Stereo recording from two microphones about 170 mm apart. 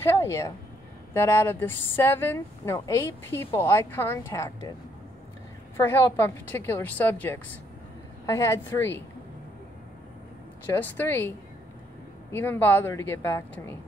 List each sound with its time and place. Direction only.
0.0 s speech: 15° left (ahead or behind)
5.8 s speech: 15° left (ahead or behind)
10.7 s speech: 10° left (ahead or behind)